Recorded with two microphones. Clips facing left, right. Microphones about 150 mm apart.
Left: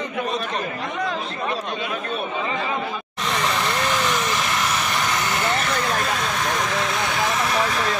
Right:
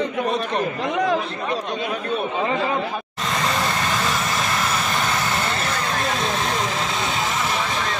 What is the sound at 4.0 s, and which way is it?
Vehicle, 35° right (ahead or behind).